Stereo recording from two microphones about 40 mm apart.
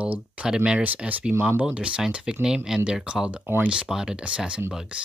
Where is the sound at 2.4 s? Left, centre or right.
Centre.